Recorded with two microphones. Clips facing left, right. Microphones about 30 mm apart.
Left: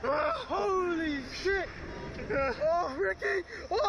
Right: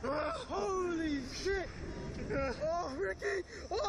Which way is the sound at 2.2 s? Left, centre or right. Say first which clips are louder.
Left 6 dB; left.